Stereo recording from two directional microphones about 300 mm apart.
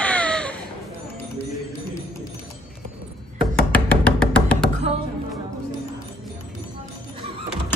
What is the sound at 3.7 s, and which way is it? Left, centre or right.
Music, centre.